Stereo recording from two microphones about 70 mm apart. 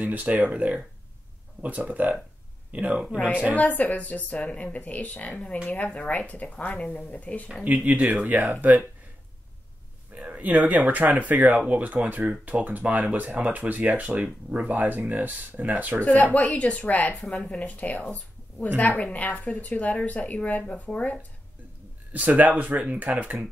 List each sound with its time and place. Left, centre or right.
0.0 s speech: right
3.5 s a woman's voice: left
7.6 s speech: right
10.1 s speech: right
16.0 s a woman's voice: centre
22.1 s speech: right